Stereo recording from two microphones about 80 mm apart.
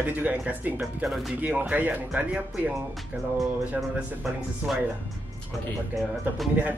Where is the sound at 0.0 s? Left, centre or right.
Centre.